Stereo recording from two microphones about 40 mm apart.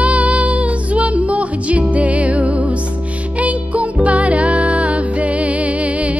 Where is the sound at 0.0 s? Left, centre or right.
Right.